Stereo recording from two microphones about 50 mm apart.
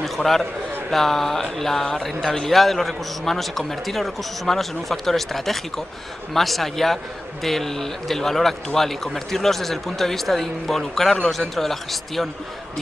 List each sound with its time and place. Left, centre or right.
0.0 s a man's voice: centre